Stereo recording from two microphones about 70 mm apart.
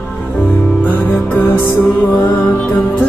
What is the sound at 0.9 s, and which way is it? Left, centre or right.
Music, left.